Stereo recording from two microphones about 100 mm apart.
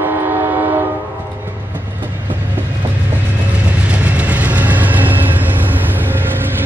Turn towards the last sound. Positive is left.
turn(degrees=-20)  # may be behind; listen again after turning